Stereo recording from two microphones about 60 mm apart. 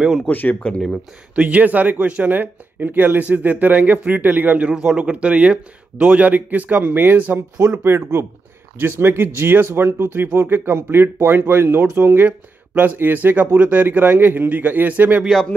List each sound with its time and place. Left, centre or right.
0.3 s speech: left
1.3 s speech: right
4.7 s speech: centre; by 7.3 s right
7.8 s speech: right
12.3 s speech: right